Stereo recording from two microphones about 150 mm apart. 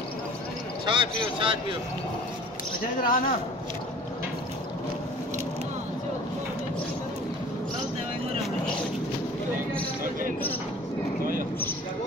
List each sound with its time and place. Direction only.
0.8 s speech: 35° right (ahead or behind)
3.0 s a man's voice: 65° left (ahead or behind)